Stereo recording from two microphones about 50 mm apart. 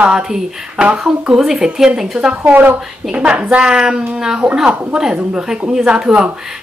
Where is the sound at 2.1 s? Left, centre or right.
Right.